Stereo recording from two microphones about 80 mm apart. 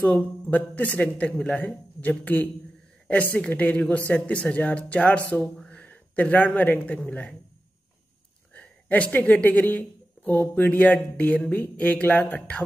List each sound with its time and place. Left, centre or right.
0.0 s speech: centre
8.5 s speech: centre